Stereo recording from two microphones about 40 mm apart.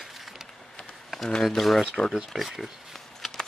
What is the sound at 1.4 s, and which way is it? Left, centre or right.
Speech, centre.